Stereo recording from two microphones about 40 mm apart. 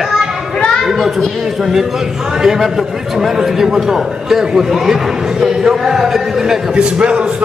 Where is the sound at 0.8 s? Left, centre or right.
Centre.